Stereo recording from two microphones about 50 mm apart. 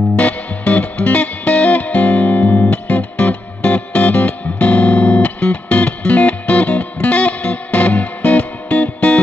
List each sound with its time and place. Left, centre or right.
0.2 s music: left